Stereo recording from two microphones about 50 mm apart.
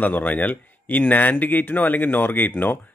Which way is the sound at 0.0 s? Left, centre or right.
Left.